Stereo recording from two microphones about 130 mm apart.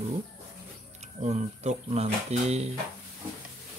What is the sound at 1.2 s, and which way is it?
Speech, 60° right (ahead or behind).